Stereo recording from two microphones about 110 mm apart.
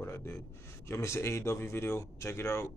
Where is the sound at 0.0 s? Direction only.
25° left (ahead or behind).